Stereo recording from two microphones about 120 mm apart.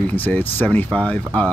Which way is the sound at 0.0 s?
15° left (ahead or behind).